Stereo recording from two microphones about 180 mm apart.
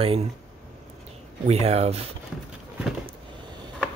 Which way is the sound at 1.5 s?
35° right (ahead or behind).